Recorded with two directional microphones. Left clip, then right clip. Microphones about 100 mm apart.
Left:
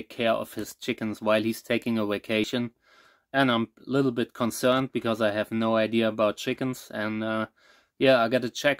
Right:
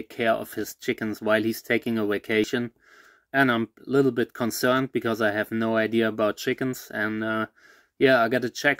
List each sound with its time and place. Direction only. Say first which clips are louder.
0.1 s speech: right 1 dB; 20° left (ahead or behind)